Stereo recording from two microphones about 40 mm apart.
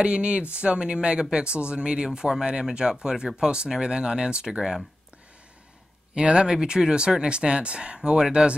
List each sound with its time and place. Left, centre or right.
0.0 s speech: right
2.0 s speech: centre
6.1 s speech: right